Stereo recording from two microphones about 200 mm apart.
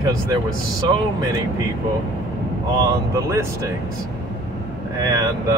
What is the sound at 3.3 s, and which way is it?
Speech, 15° right (ahead or behind).